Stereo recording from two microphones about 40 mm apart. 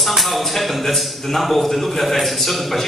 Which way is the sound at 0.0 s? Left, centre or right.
Centre.